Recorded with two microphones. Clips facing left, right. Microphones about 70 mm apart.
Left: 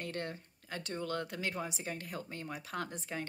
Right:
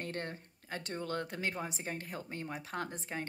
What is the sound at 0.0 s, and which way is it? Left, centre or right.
Speech, right.